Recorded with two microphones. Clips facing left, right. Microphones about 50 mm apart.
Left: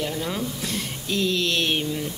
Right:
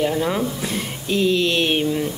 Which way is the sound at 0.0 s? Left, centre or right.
Right.